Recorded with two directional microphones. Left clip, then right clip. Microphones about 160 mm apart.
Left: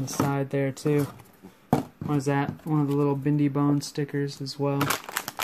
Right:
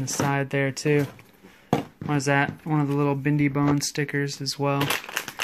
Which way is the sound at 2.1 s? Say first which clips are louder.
Right 4 dB; centre (ahead or behind).